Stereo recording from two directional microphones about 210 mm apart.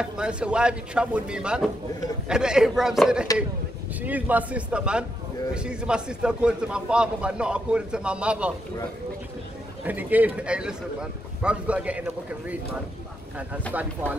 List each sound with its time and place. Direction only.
0.0 s a man's voice: 5° right (ahead or behind)
9.8 s speech: 10° right (ahead or behind)
14.0 s a man's voice: 5° left (ahead or behind)